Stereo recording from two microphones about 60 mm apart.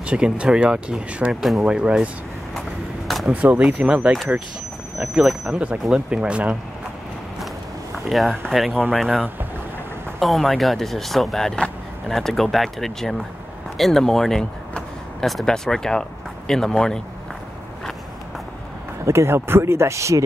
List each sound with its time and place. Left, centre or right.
0.0 s speech: centre
3.4 s speech: right
4.9 s speech: centre
5.5 s speech: centre
8.1 s speech: centre
10.2 s speech: centre
15.4 s speech: centre
19.0 s speech: right